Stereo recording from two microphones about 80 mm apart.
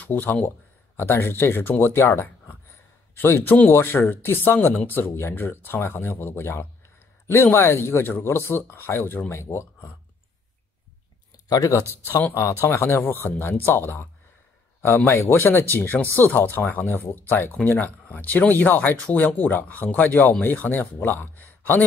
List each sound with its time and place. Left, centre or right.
0.0 s speech: left
11.4 s speech: left
12.1 s speech: left
12.4 s speech: left
15.1 s speech: left